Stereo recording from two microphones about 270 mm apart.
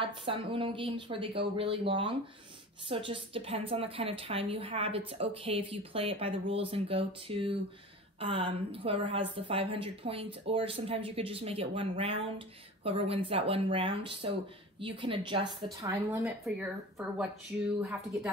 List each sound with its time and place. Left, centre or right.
0.0 s speech: centre
17.7 s speech: centre